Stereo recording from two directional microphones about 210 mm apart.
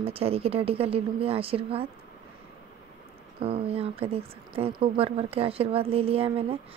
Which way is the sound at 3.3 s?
30° right (ahead or behind).